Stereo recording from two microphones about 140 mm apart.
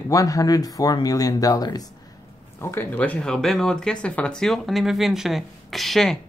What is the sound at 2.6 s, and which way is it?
Speech, 15° left (ahead or behind).